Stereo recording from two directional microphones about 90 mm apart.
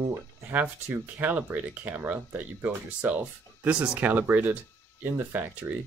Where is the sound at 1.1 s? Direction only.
20° right (ahead or behind).